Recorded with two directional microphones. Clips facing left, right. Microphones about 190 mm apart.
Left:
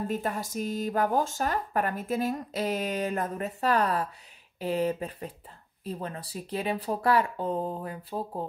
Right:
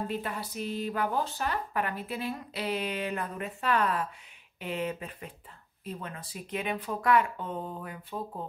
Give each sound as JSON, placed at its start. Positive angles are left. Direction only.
{"t": 0.1, "sound": "speech", "side_deg": 45}